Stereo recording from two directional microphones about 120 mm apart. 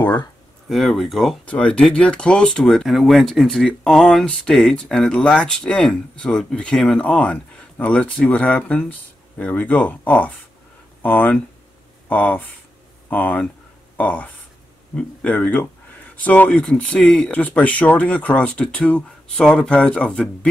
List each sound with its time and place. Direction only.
0.7 s speech: centre (ahead or behind)
1.4 s speech: 10° left (ahead or behind)